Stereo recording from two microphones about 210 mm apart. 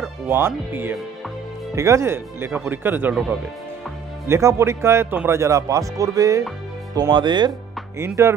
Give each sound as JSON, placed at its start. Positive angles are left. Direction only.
{"t": 0.3, "sound": "speech", "side_deg": -10}
{"t": 4.3, "sound": "speech", "side_deg": -15}